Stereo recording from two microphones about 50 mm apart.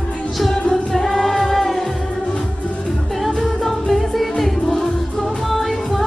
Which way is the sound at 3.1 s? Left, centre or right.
Centre.